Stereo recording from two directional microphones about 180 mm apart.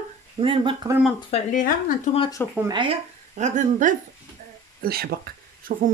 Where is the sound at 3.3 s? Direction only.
45° right (ahead or behind).